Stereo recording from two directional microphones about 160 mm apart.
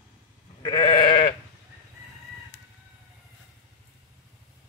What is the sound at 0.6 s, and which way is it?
Sheep, 25° left (ahead or behind).